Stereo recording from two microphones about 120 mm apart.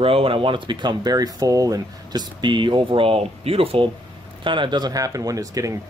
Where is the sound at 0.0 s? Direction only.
50° right (ahead or behind).